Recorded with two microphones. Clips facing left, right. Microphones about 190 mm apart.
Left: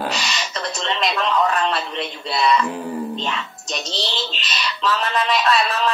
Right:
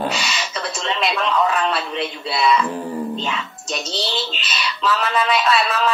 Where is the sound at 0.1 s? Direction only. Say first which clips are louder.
Right 1 dB; 40° left (ahead or behind).